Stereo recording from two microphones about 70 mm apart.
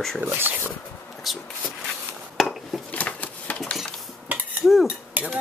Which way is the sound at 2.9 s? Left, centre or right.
Left.